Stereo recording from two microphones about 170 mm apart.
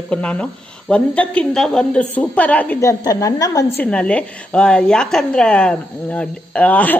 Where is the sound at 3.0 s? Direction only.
20° left (ahead or behind).